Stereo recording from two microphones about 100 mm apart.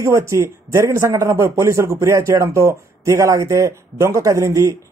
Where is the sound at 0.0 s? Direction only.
30° right (ahead or behind).